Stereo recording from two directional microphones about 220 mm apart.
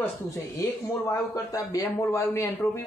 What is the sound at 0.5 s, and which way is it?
Speech, 15° left (ahead or behind).